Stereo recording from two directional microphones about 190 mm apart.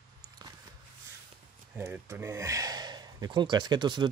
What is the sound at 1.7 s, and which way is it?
Speech, 15° right (ahead or behind).